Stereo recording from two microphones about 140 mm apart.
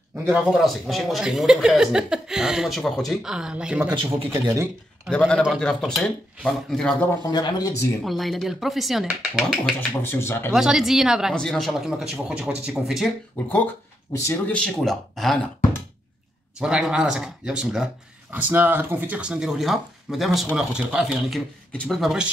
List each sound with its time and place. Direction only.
0.3 s speech: centre (ahead or behind)
4.3 s a man's voice: 20° right (ahead or behind)
5.1 s speech: 5° left (ahead or behind)
7.2 s speech: 30° left (ahead or behind)
8.0 s speech: centre (ahead or behind)
9.8 s speech: 15° left (ahead or behind)
10.5 s speech: 5° right (ahead or behind)
14.5 s speech: 5° left (ahead or behind)
16.5 s speech: 5° right (ahead or behind)